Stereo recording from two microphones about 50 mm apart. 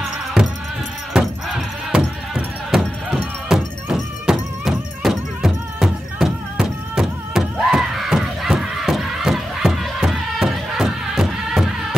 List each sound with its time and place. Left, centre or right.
0.4 s music: centre
1.9 s music: centre